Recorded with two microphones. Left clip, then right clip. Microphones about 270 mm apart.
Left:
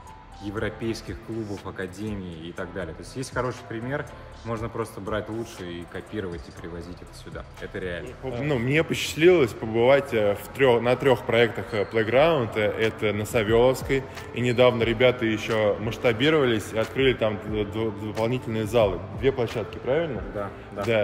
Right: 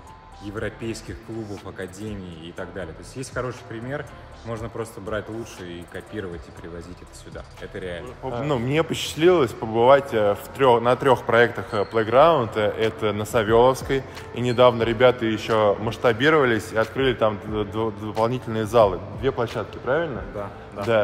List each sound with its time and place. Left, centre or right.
0.6 s speech: centre
7.7 s speech: centre
8.3 s a man's voice: centre